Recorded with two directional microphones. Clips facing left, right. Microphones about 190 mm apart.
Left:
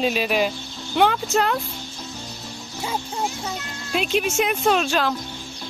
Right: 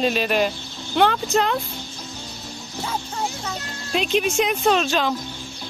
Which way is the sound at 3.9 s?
5° left (ahead or behind).